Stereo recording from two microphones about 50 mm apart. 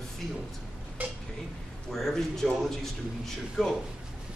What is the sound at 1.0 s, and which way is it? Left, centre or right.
Speech, right.